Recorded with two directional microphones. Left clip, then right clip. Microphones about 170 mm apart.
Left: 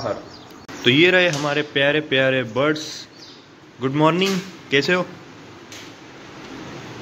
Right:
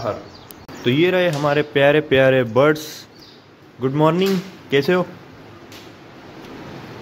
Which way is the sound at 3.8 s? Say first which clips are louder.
Right 1 dB; 15° right (ahead or behind).